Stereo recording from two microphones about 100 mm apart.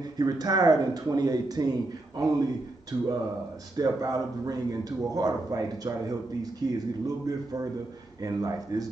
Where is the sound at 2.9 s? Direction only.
40° right (ahead or behind).